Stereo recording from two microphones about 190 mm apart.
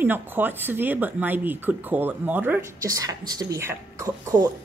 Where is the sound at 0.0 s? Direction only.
10° right (ahead or behind).